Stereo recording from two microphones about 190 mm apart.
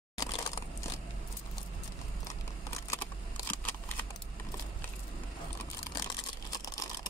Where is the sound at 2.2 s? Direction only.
15° left (ahead or behind).